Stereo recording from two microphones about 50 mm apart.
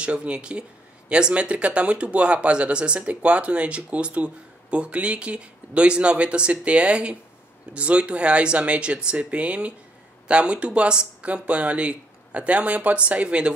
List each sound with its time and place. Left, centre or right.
0.0 s speech: right